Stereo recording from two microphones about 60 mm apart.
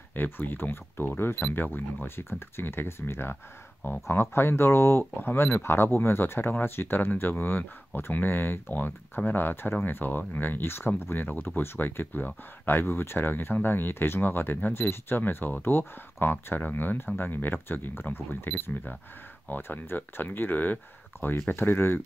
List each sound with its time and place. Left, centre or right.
0.1 s speech: left